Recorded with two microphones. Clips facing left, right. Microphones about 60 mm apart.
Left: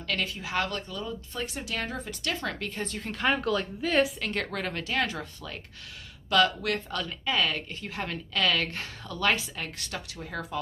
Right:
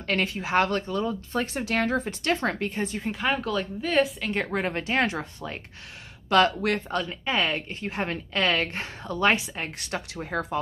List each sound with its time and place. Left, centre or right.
0.0 s a woman's voice: right
2.8 s a woman's voice: centre
4.3 s a woman's voice: right